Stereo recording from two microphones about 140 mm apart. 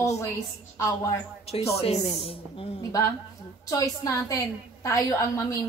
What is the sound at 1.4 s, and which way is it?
A woman's voice, 45° left (ahead or behind).